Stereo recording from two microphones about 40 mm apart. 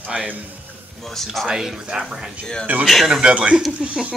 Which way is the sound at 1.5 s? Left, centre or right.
Centre.